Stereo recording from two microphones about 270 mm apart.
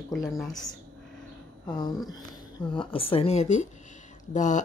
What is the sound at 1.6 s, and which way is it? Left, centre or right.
A woman's voice, centre.